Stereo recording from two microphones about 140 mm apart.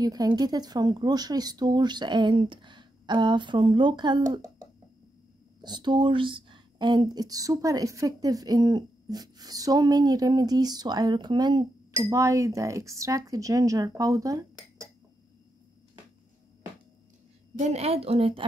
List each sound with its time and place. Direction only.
0.0 s speech: 30° right (ahead or behind)
12.0 s speech: 20° right (ahead or behind)
17.6 s a woman's voice: 50° right (ahead or behind)